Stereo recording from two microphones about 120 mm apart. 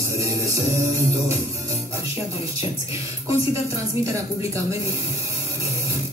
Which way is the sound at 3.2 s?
25° right (ahead or behind).